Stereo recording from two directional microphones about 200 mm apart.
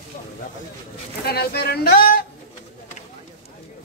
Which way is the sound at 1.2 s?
50° left (ahead or behind).